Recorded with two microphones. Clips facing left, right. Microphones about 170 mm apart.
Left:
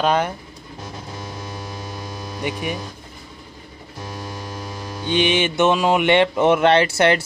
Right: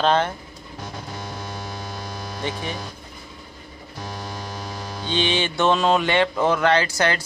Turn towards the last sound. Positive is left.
turn(degrees=25)  # may be behind; listen again after turning